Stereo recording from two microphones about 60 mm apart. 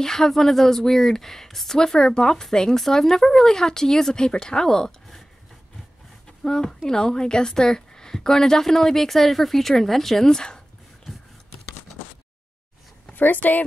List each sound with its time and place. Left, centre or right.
0.0 s speech: centre
6.4 s speech: centre
13.1 s speech: left